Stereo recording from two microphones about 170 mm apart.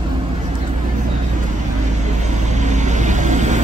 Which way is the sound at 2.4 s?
45° right (ahead or behind).